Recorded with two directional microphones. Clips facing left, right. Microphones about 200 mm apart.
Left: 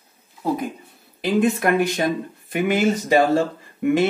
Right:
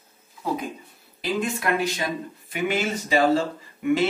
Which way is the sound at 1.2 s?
55° left (ahead or behind).